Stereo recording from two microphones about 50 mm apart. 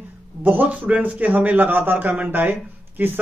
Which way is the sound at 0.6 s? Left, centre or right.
Right.